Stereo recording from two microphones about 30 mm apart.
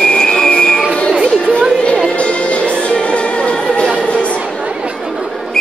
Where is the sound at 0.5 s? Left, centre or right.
Left.